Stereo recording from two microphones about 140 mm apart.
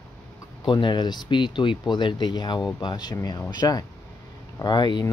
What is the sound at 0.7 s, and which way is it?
Speech, 35° left (ahead or behind).